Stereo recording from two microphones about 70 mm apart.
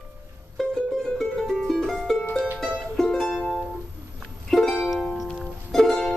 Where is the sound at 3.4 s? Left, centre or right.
Centre.